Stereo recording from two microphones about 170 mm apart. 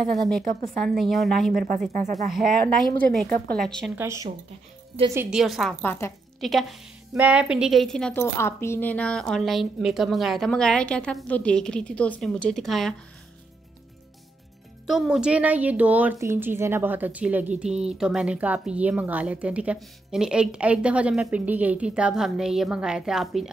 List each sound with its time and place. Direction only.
0.1 s a woman's voice: centre (ahead or behind)
1.5 s speech: 55° right (ahead or behind)
1.9 s speech: 45° right (ahead or behind)
3.0 s a woman's voice: 5° left (ahead or behind)
3.9 s a woman's voice: 15° right (ahead or behind); by 6.1 s 15° left (ahead or behind)
6.4 s a woman's voice: centre (ahead or behind)
14.9 s a woman's voice: 5° right (ahead or behind)